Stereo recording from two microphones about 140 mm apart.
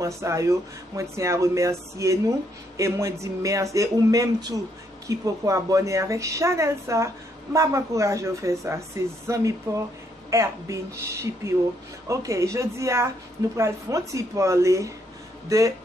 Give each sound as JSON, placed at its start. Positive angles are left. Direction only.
{"t": 0.0, "sound": "speech", "side_deg": -20}